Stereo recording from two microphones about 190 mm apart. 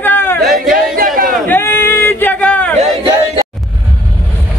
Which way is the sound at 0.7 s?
50° right (ahead or behind).